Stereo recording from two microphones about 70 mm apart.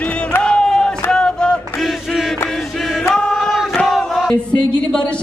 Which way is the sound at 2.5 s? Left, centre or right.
Centre.